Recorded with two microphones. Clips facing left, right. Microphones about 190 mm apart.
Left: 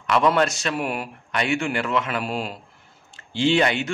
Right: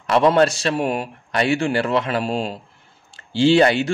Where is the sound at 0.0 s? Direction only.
35° right (ahead or behind).